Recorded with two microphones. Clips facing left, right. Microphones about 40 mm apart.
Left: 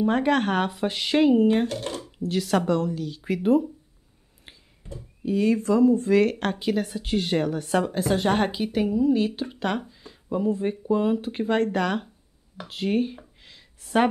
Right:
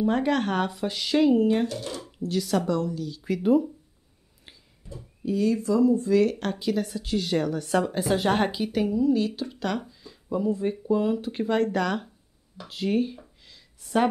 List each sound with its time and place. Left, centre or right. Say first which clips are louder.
0.0 s a woman's voice: left 2 dB; left
1.7 s speech: left 3 dB; left
2.0 s speech: left 1 dB; left
4.5 s a sound: left 2 dB; left
4.9 s speech: left 2 dB; left
7.6 s speech: left 1 dB; centre
7.9 s a woman's voice: left 1 dB; centre; by 13.2 s left
13.4 s a sound: left 3 dB; left